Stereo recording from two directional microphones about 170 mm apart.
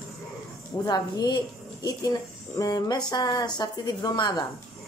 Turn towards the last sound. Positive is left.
turn(degrees=25)  # may be behind; listen again after turning